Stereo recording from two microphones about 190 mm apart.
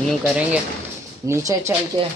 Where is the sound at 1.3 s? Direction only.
15° right (ahead or behind).